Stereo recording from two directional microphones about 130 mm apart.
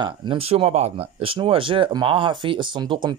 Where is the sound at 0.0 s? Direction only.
35° right (ahead or behind).